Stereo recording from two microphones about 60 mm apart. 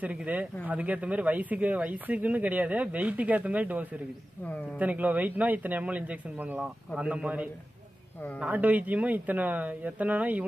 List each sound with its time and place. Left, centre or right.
0.0 s speech: right